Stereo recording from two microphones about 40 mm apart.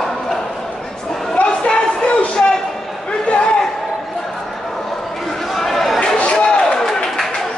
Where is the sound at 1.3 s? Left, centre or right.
Left.